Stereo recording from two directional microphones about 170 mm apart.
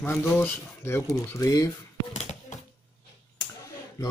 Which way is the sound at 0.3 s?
15° left (ahead or behind).